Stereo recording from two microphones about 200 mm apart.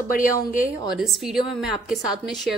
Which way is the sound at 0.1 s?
45° left (ahead or behind).